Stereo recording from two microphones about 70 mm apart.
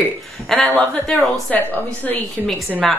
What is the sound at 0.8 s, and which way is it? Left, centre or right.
Speech, centre.